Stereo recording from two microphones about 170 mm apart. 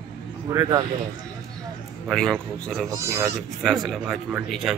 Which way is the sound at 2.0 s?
5° left (ahead or behind).